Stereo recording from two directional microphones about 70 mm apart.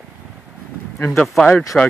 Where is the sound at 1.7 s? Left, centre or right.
Centre.